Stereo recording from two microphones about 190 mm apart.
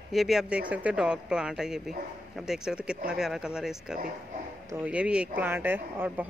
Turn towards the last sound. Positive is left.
turn(degrees=-10)  # may be behind; listen again after turning